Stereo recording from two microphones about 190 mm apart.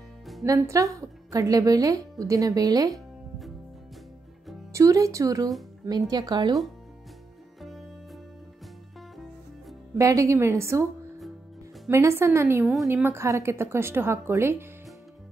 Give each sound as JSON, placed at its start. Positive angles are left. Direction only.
{"t": 0.4, "sound": "a woman's voice", "side_deg": -15}
{"t": 4.7, "sound": "a woman's voice", "side_deg": -15}
{"t": 7.6, "sound": "music", "side_deg": 0}
{"t": 9.9, "sound": "a woman's voice", "side_deg": -15}
{"t": 11.9, "sound": "a woman's voice", "side_deg": -15}